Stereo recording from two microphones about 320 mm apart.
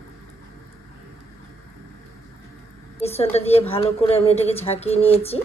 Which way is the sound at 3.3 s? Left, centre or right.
Centre.